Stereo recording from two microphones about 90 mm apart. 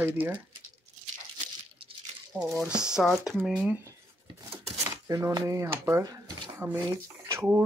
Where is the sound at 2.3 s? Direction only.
20° right (ahead or behind).